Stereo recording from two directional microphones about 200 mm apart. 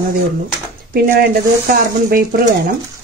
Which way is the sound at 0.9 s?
50° right (ahead or behind).